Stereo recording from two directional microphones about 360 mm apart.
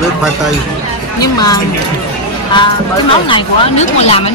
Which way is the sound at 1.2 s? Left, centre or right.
Centre.